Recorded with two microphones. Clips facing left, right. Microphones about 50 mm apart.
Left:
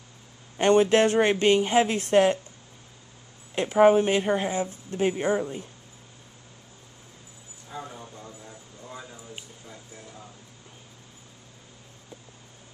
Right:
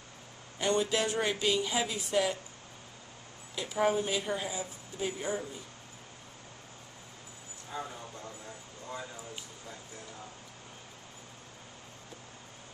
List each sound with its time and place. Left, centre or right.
0.6 s speech: left
3.5 s speech: left
7.7 s a sound: centre